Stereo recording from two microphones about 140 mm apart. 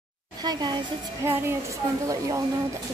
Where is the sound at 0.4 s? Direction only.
30° right (ahead or behind).